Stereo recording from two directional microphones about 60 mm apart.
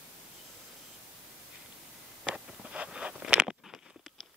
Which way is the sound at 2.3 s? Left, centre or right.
Centre.